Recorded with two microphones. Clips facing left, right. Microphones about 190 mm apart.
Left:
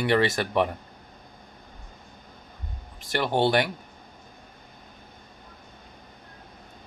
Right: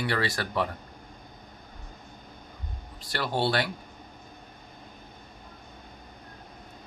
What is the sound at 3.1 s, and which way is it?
Speech, 20° left (ahead or behind).